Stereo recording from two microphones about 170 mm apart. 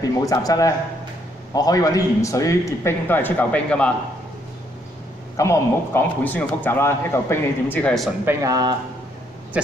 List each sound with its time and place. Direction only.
0.0 s a man's voice: 20° left (ahead or behind)
5.4 s a man's voice: 15° left (ahead or behind)
8.3 s speech: 20° right (ahead or behind)